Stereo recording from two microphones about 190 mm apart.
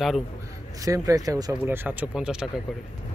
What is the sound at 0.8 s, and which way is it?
Speech, 15° right (ahead or behind).